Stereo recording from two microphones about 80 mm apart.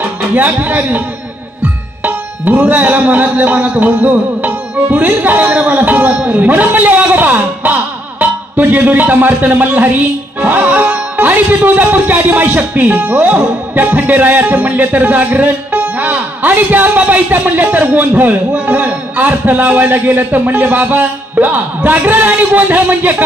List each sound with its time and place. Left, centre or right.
0.0 s speech: centre
1.6 s tabla: centre